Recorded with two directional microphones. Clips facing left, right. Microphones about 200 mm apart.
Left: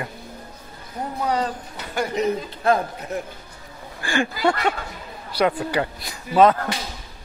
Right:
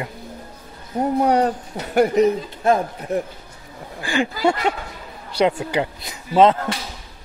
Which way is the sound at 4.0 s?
20° right (ahead or behind).